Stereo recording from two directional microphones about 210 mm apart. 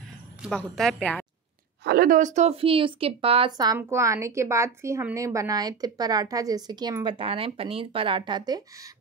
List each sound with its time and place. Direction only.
0.4 s a woman's voice: centre (ahead or behind)
1.9 s speech: 45° right (ahead or behind); by 8.6 s 20° right (ahead or behind)